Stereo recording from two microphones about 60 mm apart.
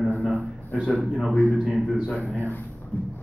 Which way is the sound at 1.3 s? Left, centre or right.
Left.